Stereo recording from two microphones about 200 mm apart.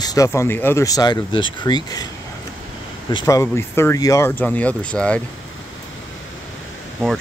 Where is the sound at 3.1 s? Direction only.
15° left (ahead or behind).